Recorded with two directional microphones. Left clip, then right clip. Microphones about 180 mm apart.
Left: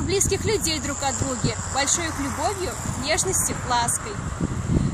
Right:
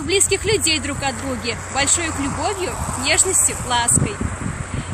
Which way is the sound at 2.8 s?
30° right (ahead or behind).